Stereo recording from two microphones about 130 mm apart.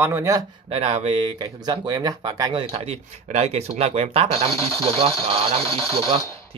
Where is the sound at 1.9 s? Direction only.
35° right (ahead or behind).